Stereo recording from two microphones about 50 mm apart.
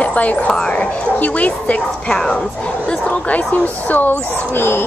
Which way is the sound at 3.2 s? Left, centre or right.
Left.